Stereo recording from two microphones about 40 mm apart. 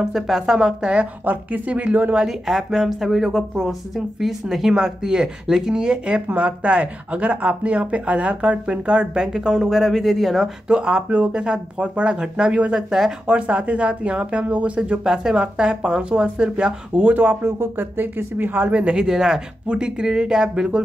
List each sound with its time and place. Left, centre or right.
0.1 s speech: centre
1.2 s speech: right
2.4 s speech: centre
9.7 s speech: centre
10.7 s speech: right
12.7 s speech: centre
13.3 s speech: right
14.8 s speech: centre
17.1 s speech: right
17.4 s speech: right
17.7 s speech: right
18.7 s speech: right
19.0 s speech: centre